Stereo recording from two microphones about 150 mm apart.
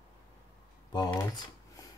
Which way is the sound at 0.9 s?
25° left (ahead or behind).